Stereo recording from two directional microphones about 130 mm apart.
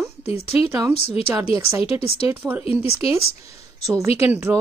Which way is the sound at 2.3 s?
15° right (ahead or behind).